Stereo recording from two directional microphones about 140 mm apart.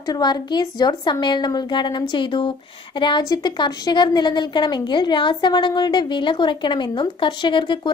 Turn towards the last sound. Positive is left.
turn(degrees=35)  # may be behind; listen again after turning